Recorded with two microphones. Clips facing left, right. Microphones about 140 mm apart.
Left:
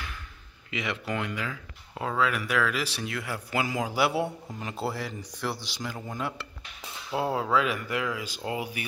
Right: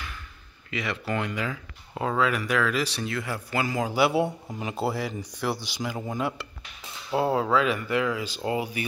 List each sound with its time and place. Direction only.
0.7 s speech: 15° left (ahead or behind)
1.1 s speech: centre (ahead or behind)
4.6 s speech: 10° right (ahead or behind)
7.3 s speech: 5° left (ahead or behind)